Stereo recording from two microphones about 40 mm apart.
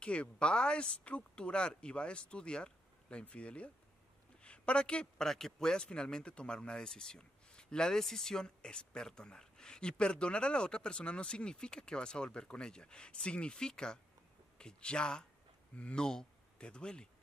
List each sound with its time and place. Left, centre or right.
0.0 s speech: left
4.4 s a sound: left
5.2 s speech: centre; by 16.0 s left
16.0 s speech: centre